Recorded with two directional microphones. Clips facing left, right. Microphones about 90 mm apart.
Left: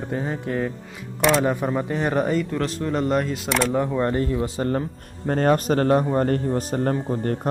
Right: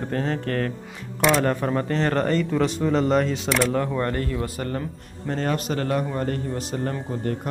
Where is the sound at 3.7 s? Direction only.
15° left (ahead or behind).